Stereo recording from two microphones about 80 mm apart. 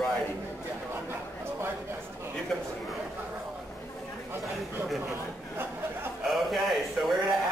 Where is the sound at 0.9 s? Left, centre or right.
Right.